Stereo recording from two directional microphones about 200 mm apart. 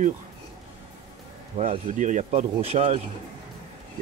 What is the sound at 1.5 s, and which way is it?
Speech, 35° right (ahead or behind).